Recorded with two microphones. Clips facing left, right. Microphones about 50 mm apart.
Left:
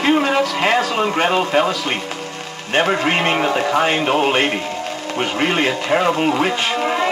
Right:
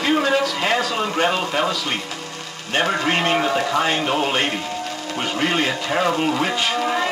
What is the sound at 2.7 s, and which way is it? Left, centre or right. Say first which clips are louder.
A man's voice: left 3 dB; left.